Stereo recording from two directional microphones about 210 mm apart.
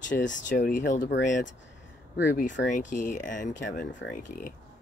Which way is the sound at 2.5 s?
40° left (ahead or behind).